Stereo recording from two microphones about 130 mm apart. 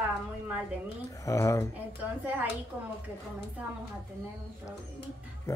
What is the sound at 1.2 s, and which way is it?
Speech, 25° left (ahead or behind).